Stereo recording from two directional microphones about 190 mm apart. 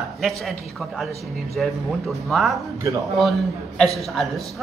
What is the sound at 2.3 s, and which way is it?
Speech, centre (ahead or behind).